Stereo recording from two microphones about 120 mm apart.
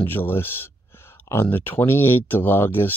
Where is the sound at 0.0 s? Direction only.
15° left (ahead or behind).